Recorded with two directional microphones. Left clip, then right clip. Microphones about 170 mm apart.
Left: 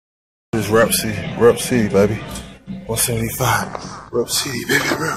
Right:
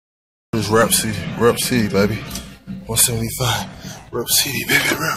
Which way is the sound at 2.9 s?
15° right (ahead or behind).